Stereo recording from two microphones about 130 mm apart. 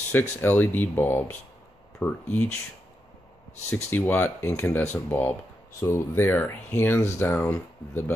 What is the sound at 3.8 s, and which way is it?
Speech, 15° left (ahead or behind).